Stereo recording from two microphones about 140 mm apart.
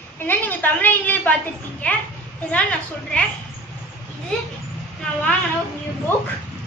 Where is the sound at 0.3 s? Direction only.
10° left (ahead or behind).